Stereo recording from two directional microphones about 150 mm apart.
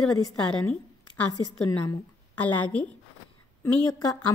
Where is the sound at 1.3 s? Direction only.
30° left (ahead or behind).